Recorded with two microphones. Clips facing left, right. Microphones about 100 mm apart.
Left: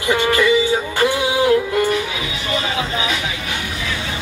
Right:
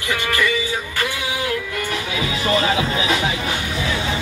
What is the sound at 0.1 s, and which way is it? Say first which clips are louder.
Music: left 6 dB; 25° left (ahead or behind).